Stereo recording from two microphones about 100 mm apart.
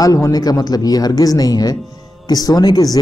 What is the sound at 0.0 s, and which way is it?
A man's voice, 35° left (ahead or behind).